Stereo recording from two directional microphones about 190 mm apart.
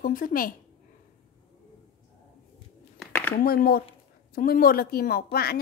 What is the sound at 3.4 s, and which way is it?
A woman's voice, 50° left (ahead or behind).